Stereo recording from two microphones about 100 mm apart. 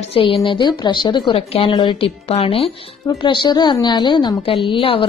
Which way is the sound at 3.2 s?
55° left (ahead or behind).